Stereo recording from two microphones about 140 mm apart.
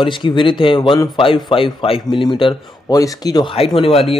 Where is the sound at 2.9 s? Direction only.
25° left (ahead or behind).